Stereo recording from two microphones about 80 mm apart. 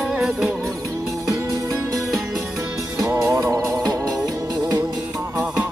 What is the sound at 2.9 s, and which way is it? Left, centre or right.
Music, right.